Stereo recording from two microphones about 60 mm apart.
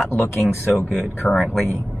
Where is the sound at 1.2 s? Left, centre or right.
Centre.